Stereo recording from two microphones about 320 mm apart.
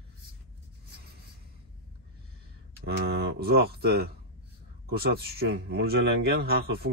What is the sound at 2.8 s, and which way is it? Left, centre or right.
A man's voice, right.